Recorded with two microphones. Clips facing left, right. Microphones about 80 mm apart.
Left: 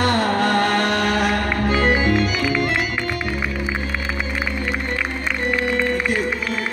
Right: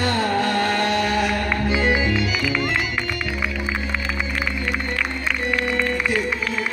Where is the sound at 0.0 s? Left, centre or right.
Left.